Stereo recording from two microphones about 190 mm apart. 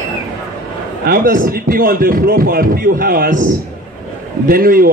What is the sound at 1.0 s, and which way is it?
Speech, 50° right (ahead or behind).